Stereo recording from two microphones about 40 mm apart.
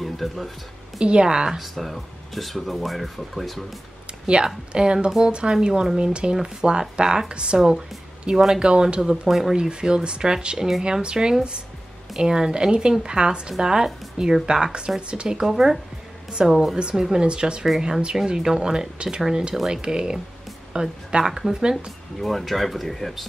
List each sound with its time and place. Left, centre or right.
0.0 s speech: centre
1.0 s speech: right
1.6 s speech: centre
4.3 s speech: right
9.3 s speech: centre
9.6 s speech: right
15.4 s speech: centre
16.3 s a woman's voice: centre
22.2 s speech: centre